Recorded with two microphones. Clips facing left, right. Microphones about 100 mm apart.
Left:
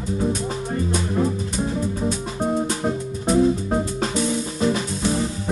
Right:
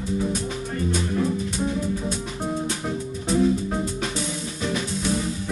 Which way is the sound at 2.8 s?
30° left (ahead or behind).